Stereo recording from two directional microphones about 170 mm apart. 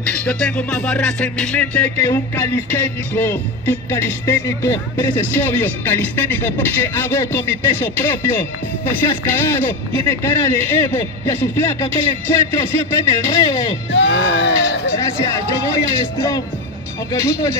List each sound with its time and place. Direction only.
0.1 s music: 5° left (ahead or behind)
13.9 s speech: 90° left
15.0 s music: 15° left (ahead or behind)